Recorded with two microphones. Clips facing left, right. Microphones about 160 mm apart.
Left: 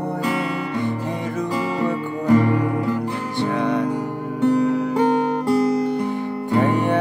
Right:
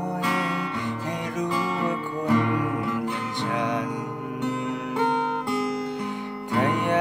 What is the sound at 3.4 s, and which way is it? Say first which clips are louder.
Music: left 7 dB; 15° right (ahead or behind).